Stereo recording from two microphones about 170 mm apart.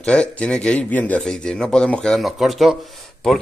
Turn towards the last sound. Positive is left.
turn(degrees=0)  # may be behind; listen again after turning